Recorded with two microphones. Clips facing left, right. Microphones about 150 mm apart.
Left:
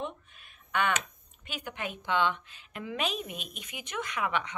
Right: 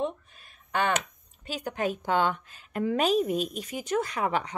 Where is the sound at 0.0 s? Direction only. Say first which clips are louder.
Right 7 dB; 35° right (ahead or behind).